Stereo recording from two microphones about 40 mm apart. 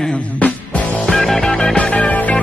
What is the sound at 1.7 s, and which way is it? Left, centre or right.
Music, left.